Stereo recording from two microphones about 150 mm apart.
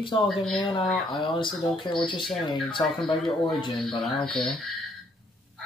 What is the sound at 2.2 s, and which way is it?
Speech, centre (ahead or behind).